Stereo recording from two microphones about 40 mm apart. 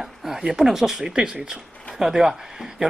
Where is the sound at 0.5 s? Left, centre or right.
Centre.